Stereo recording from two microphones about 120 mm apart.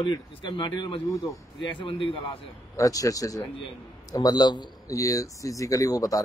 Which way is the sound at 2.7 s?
30° left (ahead or behind).